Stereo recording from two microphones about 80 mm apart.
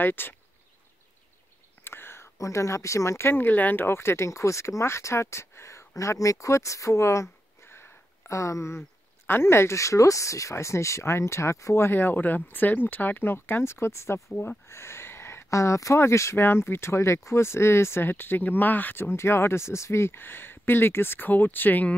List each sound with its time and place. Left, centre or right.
0.0 s speech: left
1.9 s whispering: left
2.3 s speech: left